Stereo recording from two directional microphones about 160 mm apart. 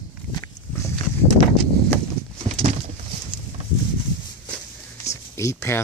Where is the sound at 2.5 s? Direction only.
45° right (ahead or behind).